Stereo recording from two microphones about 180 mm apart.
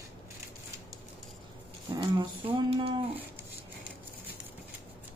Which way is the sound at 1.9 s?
25° right (ahead or behind).